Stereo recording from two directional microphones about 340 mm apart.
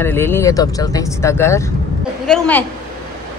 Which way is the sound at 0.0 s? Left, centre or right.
Centre.